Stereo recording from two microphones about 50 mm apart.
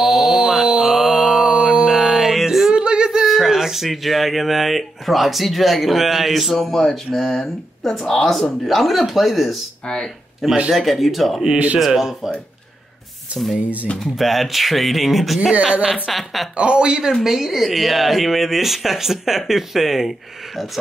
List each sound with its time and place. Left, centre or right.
0.0 s a sound: centre
0.7 s mantra: centre
2.0 s music: centre
2.7 s a sound: right
3.3 s speech: centre
8.6 s speech: centre
10.7 s speech: centre
11.4 s speech: right
11.8 s speech: centre
13.3 s speech: right
14.1 s speech: centre
15.6 s a woman's voice: centre
16.1 s speech: centre
16.5 s speech: right; by 20.6 s centre